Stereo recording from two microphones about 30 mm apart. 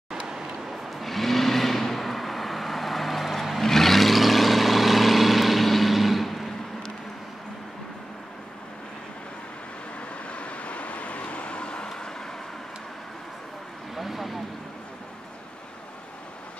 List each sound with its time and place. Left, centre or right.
0.7 s vehicle: centre
10.3 s vehicle: left
13.9 s a sound: centre